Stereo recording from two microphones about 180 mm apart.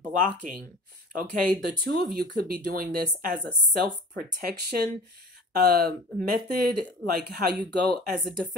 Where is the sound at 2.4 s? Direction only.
55° right (ahead or behind).